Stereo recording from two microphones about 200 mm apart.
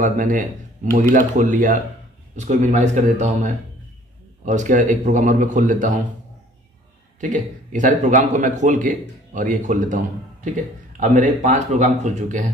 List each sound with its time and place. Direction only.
0.0 s speech: 40° right (ahead or behind)
7.2 s speech: 40° right (ahead or behind)